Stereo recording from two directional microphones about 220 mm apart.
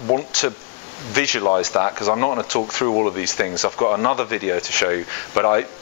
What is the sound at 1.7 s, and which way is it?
Speech, 25° left (ahead or behind).